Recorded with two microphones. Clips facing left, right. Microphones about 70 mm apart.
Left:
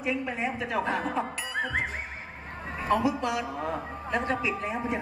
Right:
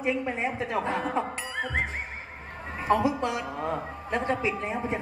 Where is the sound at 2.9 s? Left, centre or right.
Right.